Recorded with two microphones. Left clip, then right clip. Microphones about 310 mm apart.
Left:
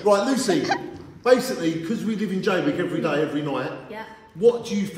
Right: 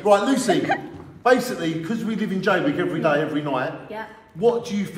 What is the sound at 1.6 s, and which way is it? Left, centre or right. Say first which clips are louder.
A man's voice: even; centre.